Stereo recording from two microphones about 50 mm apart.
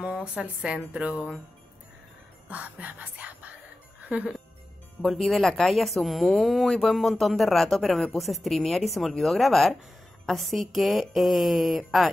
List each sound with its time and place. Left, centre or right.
0.0 s speech: right
0.9 s music: right
2.5 s music: right
5.0 s speech: centre